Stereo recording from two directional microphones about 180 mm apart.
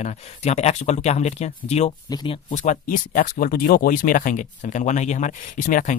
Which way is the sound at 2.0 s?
25° left (ahead or behind).